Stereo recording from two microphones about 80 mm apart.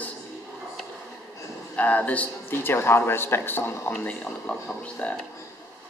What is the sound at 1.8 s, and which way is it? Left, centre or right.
Speech, centre.